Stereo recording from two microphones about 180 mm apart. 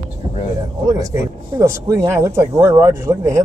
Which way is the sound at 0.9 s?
20° right (ahead or behind).